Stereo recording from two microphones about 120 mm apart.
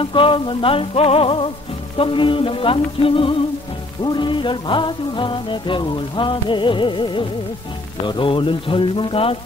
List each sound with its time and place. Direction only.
0.0 s music: 45° left (ahead or behind)